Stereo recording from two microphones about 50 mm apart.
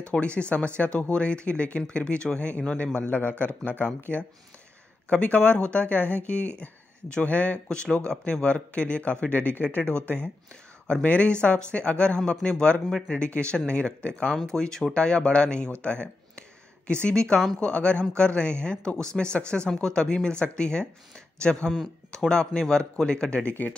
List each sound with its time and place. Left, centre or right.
0.1 s speech: left
9.3 s speech: left